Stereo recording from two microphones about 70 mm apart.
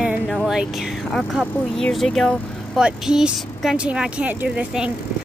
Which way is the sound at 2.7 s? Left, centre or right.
Centre.